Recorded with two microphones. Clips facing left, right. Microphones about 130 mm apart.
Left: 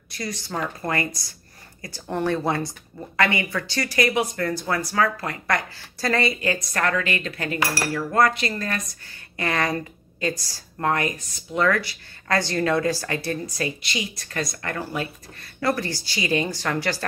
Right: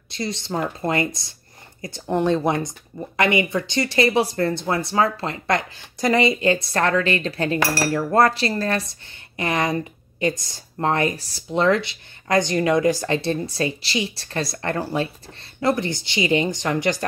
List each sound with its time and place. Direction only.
0.1 s speech: 25° right (ahead or behind)